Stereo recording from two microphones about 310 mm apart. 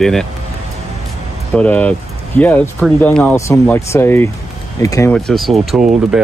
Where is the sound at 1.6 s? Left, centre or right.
Centre.